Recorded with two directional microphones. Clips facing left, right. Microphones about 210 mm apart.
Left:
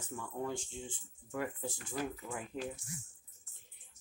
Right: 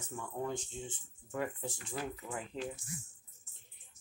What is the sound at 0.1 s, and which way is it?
Speech, 20° right (ahead or behind).